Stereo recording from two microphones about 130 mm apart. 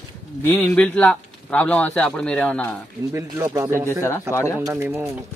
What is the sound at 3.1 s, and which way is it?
Speech, 25° right (ahead or behind).